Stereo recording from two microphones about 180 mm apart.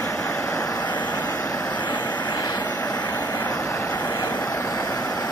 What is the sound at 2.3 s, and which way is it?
Vehicle, 20° left (ahead or behind).